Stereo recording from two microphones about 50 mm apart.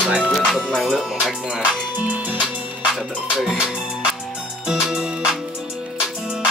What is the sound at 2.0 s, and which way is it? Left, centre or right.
Music, right.